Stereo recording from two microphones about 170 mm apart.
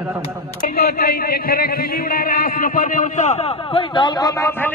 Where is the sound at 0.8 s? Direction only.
65° left (ahead or behind); by 4.7 s 20° left (ahead or behind).